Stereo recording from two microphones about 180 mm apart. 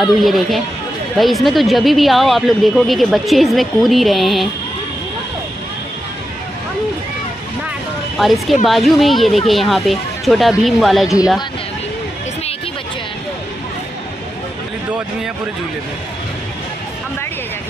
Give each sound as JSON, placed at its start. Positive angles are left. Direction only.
{"t": 0.0, "sound": "speech", "side_deg": 0}
{"t": 8.2, "sound": "speech", "side_deg": 0}